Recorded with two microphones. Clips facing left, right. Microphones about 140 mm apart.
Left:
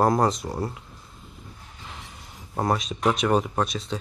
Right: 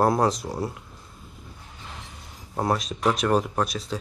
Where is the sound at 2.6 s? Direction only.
Centre (ahead or behind).